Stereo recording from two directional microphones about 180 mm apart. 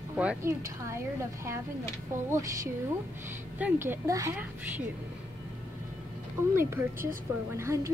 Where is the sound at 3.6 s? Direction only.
10° right (ahead or behind).